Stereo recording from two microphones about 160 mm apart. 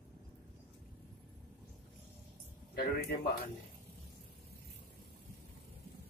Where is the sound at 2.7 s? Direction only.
75° left (ahead or behind).